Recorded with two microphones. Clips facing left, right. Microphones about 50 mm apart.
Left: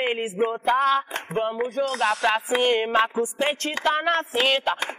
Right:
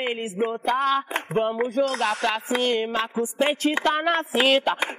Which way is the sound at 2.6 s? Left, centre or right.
Left.